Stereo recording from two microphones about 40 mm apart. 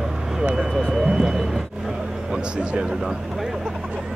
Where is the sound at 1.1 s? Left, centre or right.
Centre.